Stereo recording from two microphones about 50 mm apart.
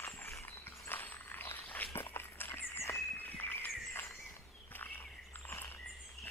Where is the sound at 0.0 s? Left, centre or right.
Left.